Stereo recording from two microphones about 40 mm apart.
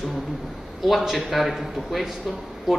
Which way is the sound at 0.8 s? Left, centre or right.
Centre.